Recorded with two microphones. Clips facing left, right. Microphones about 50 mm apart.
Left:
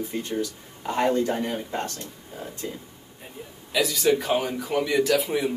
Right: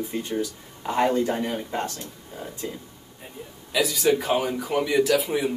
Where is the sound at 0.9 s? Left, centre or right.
Centre.